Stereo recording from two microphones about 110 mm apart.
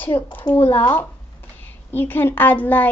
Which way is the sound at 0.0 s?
15° left (ahead or behind).